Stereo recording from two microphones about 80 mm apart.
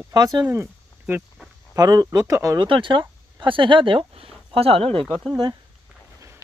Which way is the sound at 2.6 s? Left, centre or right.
Right.